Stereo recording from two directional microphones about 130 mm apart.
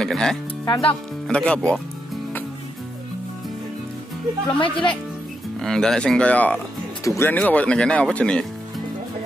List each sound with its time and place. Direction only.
0.0 s speech: 5° left (ahead or behind)
0.7 s speech: 45° left (ahead or behind)
1.2 s speech: 10° left (ahead or behind)
4.6 s speech: 40° left (ahead or behind)
5.6 s speech: 5° left (ahead or behind)